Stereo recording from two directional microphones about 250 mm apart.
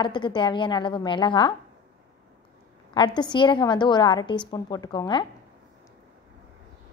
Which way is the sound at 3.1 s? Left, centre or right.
Centre.